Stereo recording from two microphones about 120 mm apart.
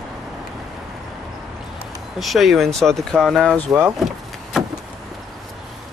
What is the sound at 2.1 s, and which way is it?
Speech, centre (ahead or behind).